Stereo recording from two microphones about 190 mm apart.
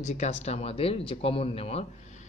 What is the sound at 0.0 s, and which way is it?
A man's voice, 35° left (ahead or behind).